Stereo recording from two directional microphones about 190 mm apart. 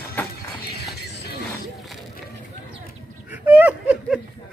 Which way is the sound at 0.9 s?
55° left (ahead or behind).